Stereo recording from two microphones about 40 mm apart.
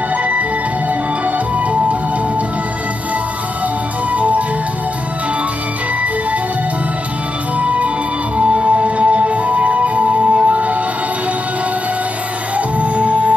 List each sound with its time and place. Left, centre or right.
0.2 s music: right
4.1 s music: right
7.5 s music: right
12.5 s music: right